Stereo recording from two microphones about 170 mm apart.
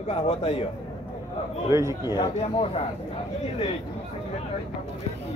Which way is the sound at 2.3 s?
35° left (ahead or behind).